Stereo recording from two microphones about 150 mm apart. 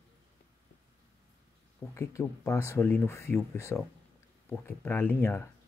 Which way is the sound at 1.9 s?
20° left (ahead or behind).